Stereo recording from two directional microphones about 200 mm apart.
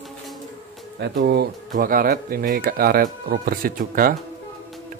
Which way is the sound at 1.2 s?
50° right (ahead or behind).